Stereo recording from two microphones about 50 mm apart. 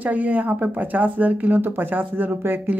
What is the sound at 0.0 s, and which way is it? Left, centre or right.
Speech, right.